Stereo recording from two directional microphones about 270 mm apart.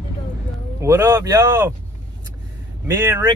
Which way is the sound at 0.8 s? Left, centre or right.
Centre.